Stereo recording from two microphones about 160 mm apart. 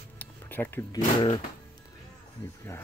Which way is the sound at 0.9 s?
30° left (ahead or behind).